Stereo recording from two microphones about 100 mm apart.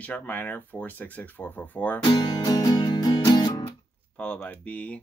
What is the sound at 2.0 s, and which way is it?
Music, 45° left (ahead or behind).